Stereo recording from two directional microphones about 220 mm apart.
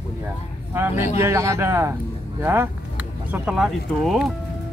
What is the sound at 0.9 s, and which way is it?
Speech, 35° left (ahead or behind).